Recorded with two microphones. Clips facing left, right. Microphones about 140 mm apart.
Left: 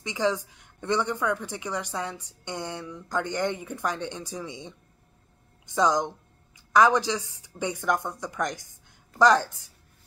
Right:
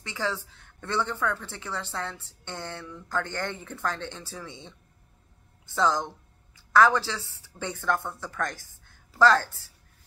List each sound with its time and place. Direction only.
0.0 s a woman's voice: 15° left (ahead or behind)